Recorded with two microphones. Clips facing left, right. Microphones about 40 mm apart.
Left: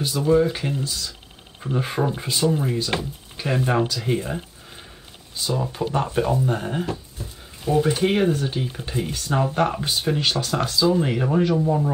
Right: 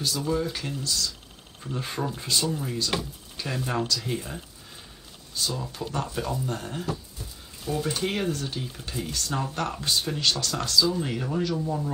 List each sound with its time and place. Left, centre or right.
0.0 s speech: left
5.5 s speech: left